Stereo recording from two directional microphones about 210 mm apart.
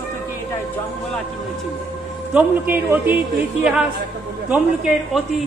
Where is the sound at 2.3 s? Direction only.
10° right (ahead or behind).